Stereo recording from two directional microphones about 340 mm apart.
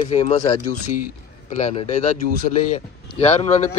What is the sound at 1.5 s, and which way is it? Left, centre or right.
A man's voice, centre.